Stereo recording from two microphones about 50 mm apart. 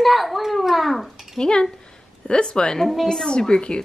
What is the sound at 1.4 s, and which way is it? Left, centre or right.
Speech, centre.